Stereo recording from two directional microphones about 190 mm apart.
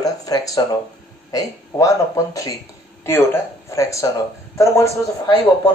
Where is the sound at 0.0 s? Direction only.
20° left (ahead or behind).